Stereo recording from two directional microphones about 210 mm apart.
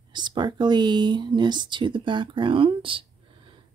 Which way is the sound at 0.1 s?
20° right (ahead or behind).